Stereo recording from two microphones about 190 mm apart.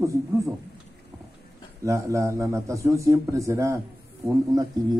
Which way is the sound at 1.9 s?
15° right (ahead or behind).